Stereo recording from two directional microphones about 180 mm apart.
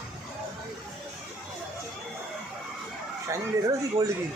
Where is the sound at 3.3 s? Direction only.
15° right (ahead or behind).